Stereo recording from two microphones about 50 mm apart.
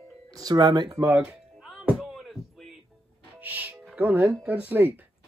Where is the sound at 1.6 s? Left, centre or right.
Centre.